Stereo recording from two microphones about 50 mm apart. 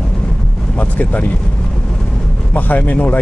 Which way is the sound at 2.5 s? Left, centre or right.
Left.